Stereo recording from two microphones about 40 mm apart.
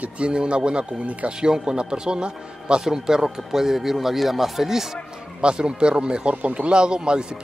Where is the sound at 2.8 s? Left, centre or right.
Centre.